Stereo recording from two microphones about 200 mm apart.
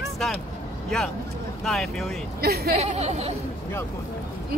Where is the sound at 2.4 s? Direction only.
50° right (ahead or behind).